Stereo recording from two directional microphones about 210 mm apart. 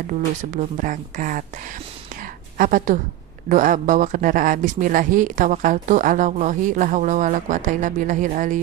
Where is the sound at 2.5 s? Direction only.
40° right (ahead or behind).